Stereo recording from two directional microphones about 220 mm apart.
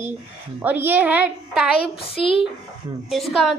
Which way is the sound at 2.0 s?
25° left (ahead or behind).